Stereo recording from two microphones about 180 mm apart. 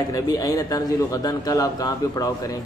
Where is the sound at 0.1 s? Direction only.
20° left (ahead or behind).